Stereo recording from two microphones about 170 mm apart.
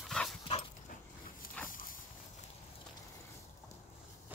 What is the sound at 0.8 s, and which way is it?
Dog, 55° left (ahead or behind).